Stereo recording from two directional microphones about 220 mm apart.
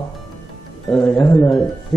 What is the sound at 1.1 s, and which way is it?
Speech, 20° left (ahead or behind).